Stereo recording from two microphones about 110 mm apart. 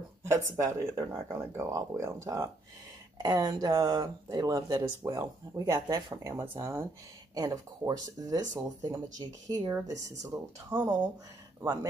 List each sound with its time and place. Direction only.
0.2 s speech: 30° right (ahead or behind)
7.3 s speech: 35° right (ahead or behind)
10.7 s speech: 20° right (ahead or behind)